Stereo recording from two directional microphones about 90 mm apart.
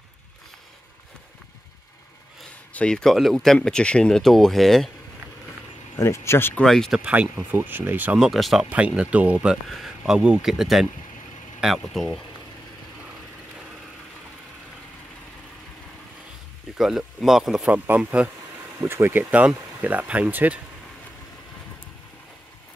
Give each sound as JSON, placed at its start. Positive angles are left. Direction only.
{"t": 2.7, "sound": "speech", "side_deg": 10}
{"t": 5.9, "sound": "speech", "side_deg": 30}
{"t": 6.6, "sound": "speech", "side_deg": 5}
{"t": 7.0, "sound": "speech", "side_deg": -15}
{"t": 8.2, "sound": "speech", "side_deg": 0}
{"t": 8.6, "sound": "speech", "side_deg": -15}
{"t": 9.7, "sound": "speech", "side_deg": 0}
{"t": 16.7, "sound": "speech", "side_deg": -5}
{"t": 17.7, "sound": "speech", "side_deg": -20}